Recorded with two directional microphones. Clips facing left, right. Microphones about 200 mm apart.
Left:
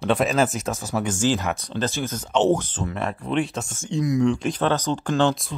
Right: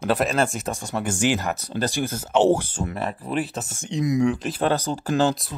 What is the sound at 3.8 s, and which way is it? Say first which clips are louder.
Speech: even; 20° right (ahead or behind).